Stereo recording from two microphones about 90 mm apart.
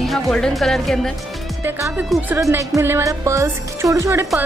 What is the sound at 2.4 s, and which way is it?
Speech, 35° right (ahead or behind).